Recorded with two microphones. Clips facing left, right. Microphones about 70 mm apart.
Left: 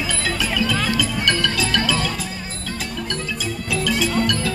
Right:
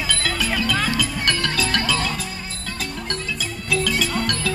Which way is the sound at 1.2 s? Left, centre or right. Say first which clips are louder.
Left 2 dB; right.